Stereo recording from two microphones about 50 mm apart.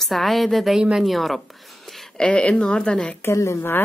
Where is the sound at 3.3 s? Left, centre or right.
Left.